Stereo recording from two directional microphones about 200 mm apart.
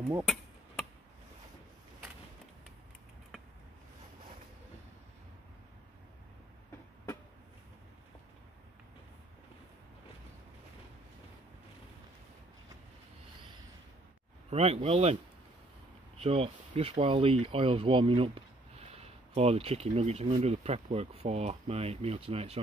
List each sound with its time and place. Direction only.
0.2 s a sound: centre (ahead or behind)
14.5 s speech: 30° right (ahead or behind)
16.2 s speech: 30° right (ahead or behind)